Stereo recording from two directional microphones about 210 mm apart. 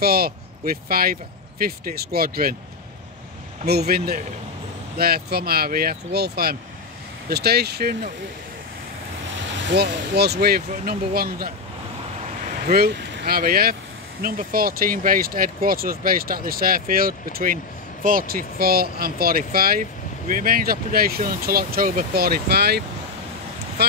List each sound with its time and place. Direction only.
0.0 s speech: 45° right (ahead or behind)
3.6 s speech: 50° right (ahead or behind)
9.6 s speech: 55° right (ahead or behind)
12.6 s speech: 45° right (ahead or behind)